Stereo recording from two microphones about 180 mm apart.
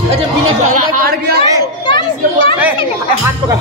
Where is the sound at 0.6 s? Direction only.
45° right (ahead or behind).